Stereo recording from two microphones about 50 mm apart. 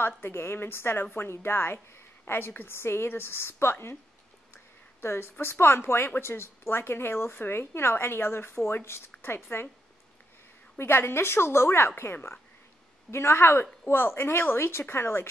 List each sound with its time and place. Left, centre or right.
0.3 s speech: left
5.0 s speech: left
10.8 s a woman's voice: left